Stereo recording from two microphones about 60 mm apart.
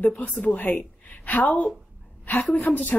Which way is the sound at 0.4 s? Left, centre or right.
Left.